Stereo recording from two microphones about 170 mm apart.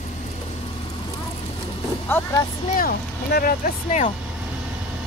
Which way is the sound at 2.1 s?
15° left (ahead or behind).